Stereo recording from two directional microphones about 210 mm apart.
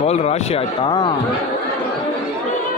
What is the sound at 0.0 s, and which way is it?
Speech, 30° left (ahead or behind).